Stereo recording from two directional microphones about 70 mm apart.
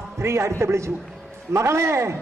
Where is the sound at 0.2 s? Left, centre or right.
Right.